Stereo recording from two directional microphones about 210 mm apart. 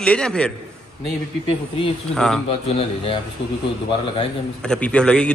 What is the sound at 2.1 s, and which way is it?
Speech, 5° left (ahead or behind).